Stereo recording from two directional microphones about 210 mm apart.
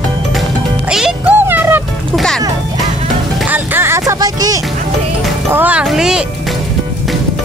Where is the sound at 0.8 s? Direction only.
5° right (ahead or behind).